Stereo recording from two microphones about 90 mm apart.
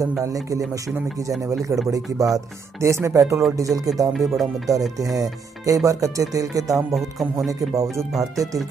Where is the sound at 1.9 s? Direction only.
40° right (ahead or behind).